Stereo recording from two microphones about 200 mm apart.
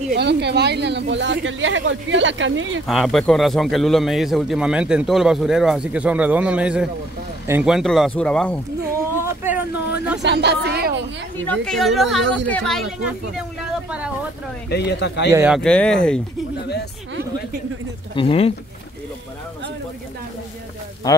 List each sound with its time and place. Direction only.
0.1 s speech: 55° right (ahead or behind); by 2.8 s 75° right (ahead or behind)
2.9 s a man's voice: centre (ahead or behind)
9.2 s a sound: 10° right (ahead or behind)
10.2 s speech: 55° right (ahead or behind)
11.4 s a man's voice: 5° left (ahead or behind)
13.4 s speech: 5° right (ahead or behind)
14.7 s speech: 55° left (ahead or behind)
15.3 s a man's voice: 5° right (ahead or behind)
18.1 s speech: 30° left (ahead or behind)